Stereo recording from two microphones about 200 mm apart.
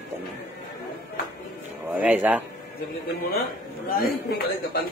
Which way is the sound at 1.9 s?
10° right (ahead or behind).